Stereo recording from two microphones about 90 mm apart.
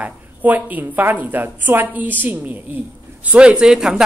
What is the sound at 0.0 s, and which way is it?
A woman's voice, 20° right (ahead or behind).